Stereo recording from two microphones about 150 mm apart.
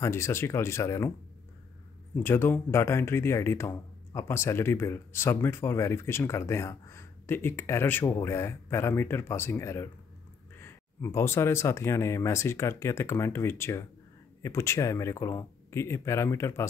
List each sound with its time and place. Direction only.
0.0 s speech: 15° left (ahead or behind)
2.1 s speech: 15° left (ahead or behind)